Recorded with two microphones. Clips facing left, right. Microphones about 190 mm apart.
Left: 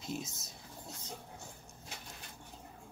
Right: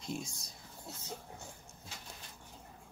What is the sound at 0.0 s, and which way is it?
Speech, centre (ahead or behind).